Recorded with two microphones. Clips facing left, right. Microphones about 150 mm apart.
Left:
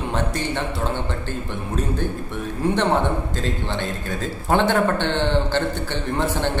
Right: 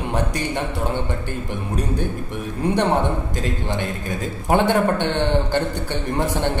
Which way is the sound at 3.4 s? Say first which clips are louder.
Right 1 dB; 15° right (ahead or behind).